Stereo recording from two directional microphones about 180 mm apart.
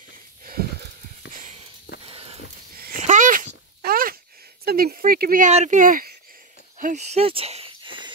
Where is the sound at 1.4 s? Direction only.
35° right (ahead or behind).